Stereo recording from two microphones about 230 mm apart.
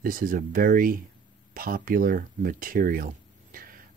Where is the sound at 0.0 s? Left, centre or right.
Right.